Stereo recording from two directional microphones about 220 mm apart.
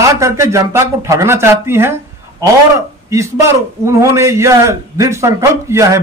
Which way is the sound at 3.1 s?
15° right (ahead or behind).